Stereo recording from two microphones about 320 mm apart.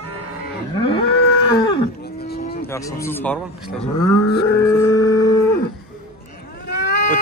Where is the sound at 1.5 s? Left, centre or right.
Centre.